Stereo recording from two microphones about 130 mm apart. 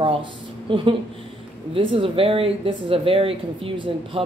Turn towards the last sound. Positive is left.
turn(degrees=-45)  # may be behind; listen again after turning